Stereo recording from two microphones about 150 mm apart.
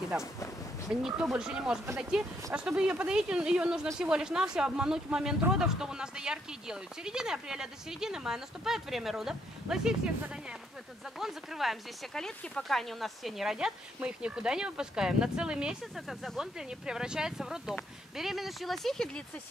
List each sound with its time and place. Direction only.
1.0 s speech: 5° right (ahead or behind)